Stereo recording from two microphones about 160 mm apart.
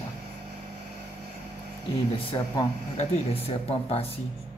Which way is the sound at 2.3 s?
25° left (ahead or behind).